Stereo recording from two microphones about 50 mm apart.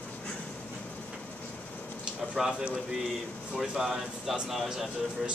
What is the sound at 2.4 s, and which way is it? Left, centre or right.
Speech, centre.